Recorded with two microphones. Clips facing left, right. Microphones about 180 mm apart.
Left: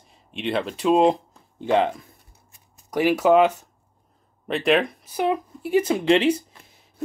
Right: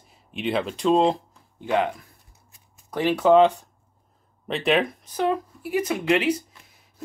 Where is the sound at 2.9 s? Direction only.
10° left (ahead or behind).